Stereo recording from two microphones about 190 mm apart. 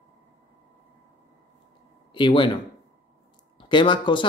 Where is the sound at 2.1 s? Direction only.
25° left (ahead or behind).